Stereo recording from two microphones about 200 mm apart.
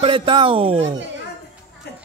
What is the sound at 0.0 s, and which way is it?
Speech, 25° right (ahead or behind).